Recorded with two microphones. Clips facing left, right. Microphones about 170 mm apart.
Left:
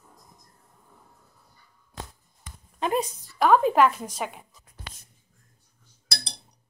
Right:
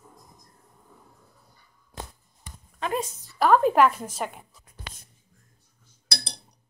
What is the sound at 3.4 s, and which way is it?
Cutlery, centre (ahead or behind).